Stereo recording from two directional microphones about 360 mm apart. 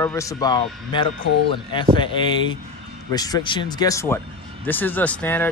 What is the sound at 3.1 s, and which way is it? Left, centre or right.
Speech, centre.